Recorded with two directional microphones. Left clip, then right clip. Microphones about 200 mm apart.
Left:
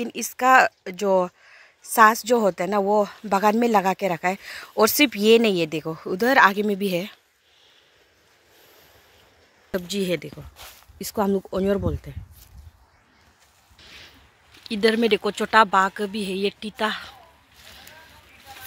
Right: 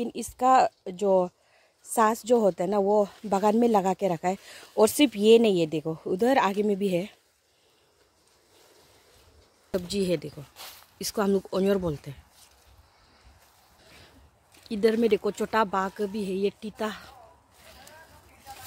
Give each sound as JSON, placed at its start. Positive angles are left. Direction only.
{"t": 0.0, "sound": "speech", "side_deg": -10}
{"t": 1.0, "sound": "speech", "side_deg": 20}
{"t": 2.0, "sound": "speech", "side_deg": -10}
{"t": 5.9, "sound": "speech", "side_deg": 15}
{"t": 6.1, "sound": "speech", "side_deg": -10}
{"t": 9.7, "sound": "a woman's voice", "side_deg": 0}
{"t": 14.6, "sound": "a woman's voice", "side_deg": 5}